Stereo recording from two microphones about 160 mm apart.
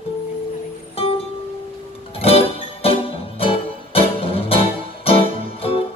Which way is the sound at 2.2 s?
35° left (ahead or behind).